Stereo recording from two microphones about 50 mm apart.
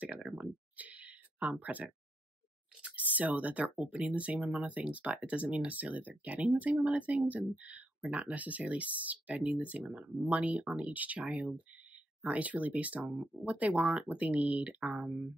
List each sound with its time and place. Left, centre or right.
0.4 s a sound: right
2.8 s speech: right
13.0 s speech: centre
13.5 s speech: right; by 15.3 s centre